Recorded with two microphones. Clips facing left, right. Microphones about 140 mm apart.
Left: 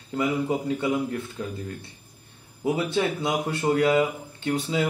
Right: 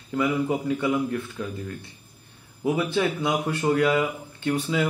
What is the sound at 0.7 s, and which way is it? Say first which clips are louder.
Speech: right 1 dB; 25° left (ahead or behind).